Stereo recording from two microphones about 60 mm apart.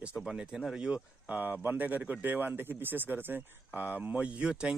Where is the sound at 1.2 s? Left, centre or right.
Right.